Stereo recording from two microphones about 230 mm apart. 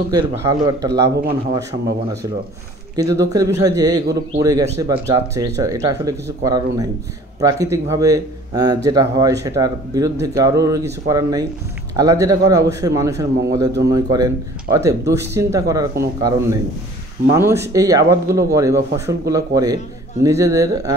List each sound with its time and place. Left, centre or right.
0.1 s speech: centre
3.0 s speech: centre